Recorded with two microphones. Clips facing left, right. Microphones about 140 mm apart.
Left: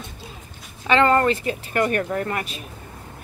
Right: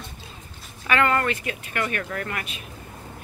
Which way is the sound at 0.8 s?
30° left (ahead or behind).